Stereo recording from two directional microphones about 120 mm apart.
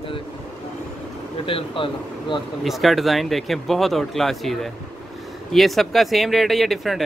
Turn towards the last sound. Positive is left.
turn(degrees=0)  # may be behind; listen again after turning